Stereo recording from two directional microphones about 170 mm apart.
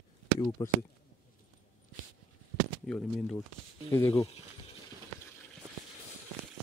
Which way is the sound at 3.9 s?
15° left (ahead or behind).